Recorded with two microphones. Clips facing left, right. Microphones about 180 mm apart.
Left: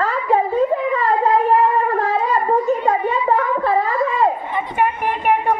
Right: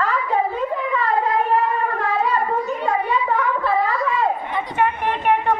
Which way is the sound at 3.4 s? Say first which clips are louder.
Left 2 dB; 35° left (ahead or behind).